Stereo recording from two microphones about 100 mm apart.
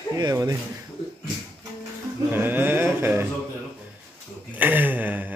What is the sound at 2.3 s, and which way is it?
Speech, 20° right (ahead or behind).